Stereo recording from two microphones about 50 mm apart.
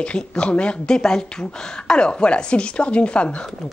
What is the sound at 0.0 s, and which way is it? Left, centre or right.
Speech, left.